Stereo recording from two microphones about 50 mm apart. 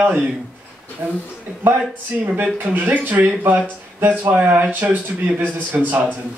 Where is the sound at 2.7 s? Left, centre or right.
Right.